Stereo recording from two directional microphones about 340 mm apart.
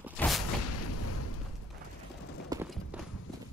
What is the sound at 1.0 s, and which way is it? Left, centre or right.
Explosion, left.